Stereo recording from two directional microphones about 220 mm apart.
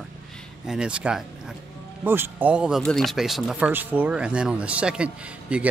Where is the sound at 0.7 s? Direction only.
5° right (ahead or behind).